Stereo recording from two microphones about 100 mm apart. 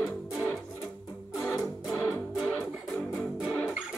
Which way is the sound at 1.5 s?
30° left (ahead or behind).